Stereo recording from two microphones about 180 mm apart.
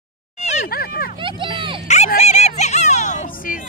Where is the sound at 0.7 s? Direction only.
55° left (ahead or behind).